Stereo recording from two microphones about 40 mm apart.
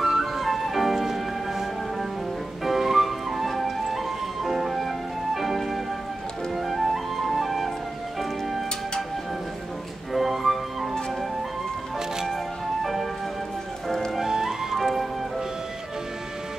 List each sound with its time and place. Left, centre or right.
0.0 s music: centre
10.1 s music: centre
13.8 s music: centre
14.1 s music: centre